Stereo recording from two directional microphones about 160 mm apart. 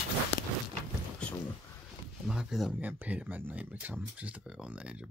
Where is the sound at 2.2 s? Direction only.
Centre (ahead or behind).